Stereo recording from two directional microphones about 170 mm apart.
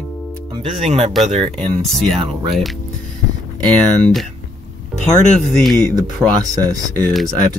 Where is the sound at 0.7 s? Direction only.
40° right (ahead or behind).